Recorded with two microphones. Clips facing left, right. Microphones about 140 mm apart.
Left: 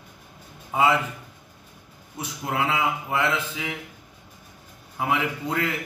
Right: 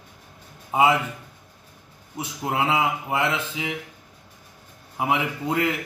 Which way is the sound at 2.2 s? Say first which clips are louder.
Right 2 dB; 20° right (ahead or behind).